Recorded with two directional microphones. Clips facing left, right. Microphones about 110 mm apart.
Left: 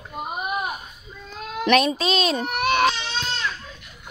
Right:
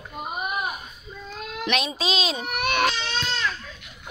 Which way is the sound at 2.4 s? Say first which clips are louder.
Left 2 dB; 30° left (ahead or behind).